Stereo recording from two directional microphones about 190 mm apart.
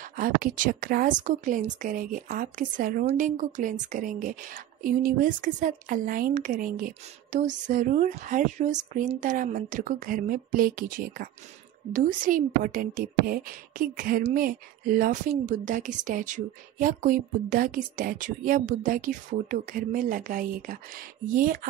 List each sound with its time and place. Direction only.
0.2 s speech: 45° right (ahead or behind)